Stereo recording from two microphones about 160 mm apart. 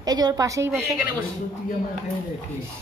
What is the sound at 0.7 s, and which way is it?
Speech, 5° right (ahead or behind).